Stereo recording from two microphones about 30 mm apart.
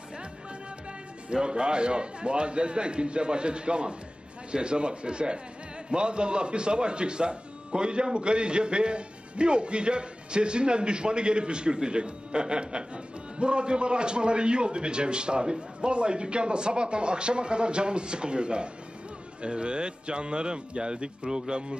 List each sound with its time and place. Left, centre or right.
1.3 s speech: right